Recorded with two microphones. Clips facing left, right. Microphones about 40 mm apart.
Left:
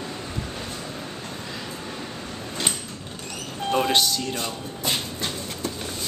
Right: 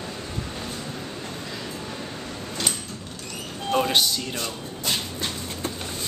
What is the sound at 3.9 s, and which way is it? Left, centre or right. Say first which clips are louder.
Speech: left 1 dB; centre.